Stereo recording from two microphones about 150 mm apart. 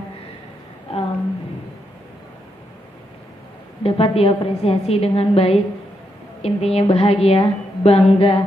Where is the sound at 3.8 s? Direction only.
40° left (ahead or behind).